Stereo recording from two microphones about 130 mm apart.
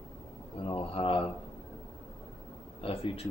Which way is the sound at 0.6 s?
45° left (ahead or behind).